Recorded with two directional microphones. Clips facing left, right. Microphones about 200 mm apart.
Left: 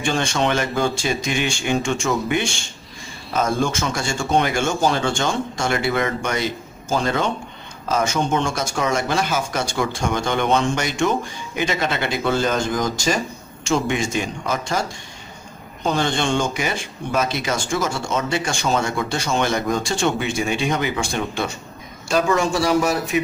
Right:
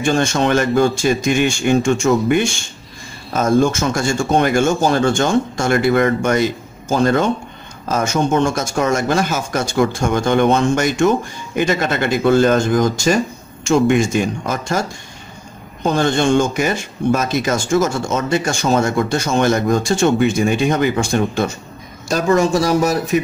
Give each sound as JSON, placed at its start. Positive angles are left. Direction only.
{"t": 0.0, "sound": "speech", "side_deg": -45}